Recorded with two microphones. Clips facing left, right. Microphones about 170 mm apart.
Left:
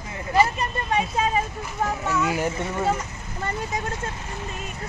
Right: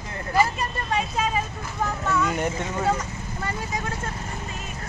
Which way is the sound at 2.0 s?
5° left (ahead or behind).